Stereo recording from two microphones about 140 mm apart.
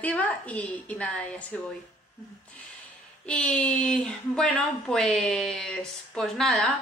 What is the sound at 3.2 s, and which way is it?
A woman's voice, 5° left (ahead or behind).